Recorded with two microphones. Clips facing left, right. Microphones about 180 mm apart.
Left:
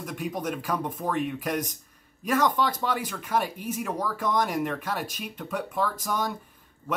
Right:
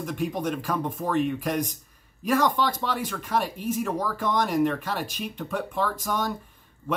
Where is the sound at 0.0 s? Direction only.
5° left (ahead or behind).